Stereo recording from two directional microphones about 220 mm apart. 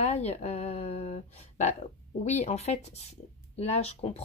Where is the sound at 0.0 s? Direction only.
30° left (ahead or behind).